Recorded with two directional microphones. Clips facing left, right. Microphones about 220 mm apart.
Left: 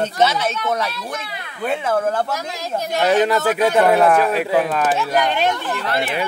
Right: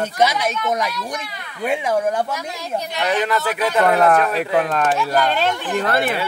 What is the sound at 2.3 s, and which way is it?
Speech, 45° left (ahead or behind).